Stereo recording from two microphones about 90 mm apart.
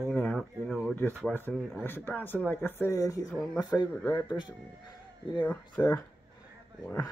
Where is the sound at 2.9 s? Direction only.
40° left (ahead or behind).